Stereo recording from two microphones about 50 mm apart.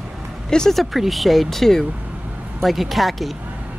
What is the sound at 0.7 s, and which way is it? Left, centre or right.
Speech, centre.